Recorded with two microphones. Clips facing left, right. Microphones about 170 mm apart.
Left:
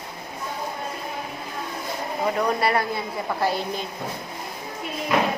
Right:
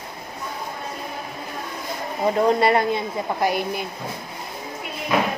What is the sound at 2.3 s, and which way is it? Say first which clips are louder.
A woman's voice: right 6 dB; 25° right (ahead or behind).